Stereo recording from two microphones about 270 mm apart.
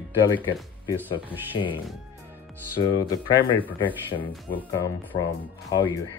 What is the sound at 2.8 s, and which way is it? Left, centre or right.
Speech, centre.